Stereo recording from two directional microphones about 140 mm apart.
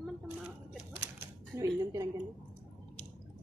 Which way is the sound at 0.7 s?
10° right (ahead or behind).